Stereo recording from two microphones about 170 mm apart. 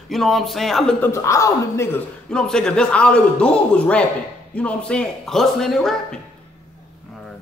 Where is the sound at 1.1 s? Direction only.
15° left (ahead or behind).